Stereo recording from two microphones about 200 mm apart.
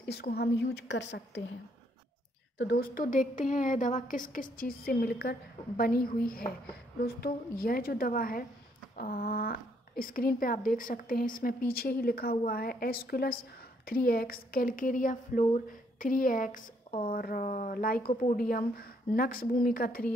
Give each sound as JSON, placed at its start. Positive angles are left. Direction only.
{"t": 0.0, "sound": "a woman's voice", "side_deg": 55}
{"t": 2.6, "sound": "a woman's voice", "side_deg": 50}